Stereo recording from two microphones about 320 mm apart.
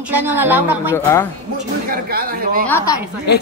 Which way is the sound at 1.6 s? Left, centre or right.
Right.